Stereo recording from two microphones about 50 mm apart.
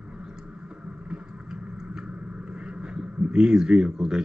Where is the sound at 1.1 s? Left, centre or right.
Centre.